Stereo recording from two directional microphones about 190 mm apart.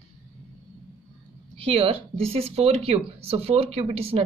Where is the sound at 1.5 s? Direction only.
30° right (ahead or behind).